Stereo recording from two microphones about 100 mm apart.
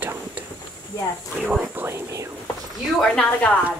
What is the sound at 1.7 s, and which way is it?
Whispering, 25° right (ahead or behind).